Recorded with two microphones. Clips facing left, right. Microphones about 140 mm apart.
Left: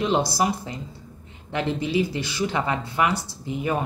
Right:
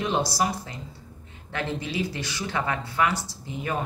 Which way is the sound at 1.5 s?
15° left (ahead or behind).